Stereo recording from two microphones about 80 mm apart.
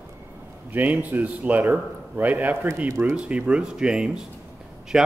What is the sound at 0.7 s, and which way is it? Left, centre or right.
Speech, centre.